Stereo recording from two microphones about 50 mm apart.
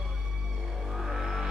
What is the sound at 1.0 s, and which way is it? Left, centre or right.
Music, centre.